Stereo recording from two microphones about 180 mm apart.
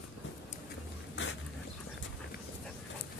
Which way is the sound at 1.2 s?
90° left.